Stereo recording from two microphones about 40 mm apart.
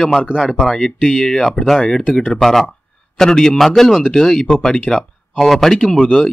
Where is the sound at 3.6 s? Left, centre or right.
Centre.